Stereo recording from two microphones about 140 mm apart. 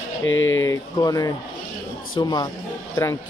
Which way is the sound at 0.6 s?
25° left (ahead or behind).